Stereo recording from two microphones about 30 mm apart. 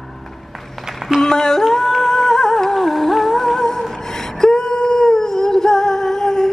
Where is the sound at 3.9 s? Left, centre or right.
Centre.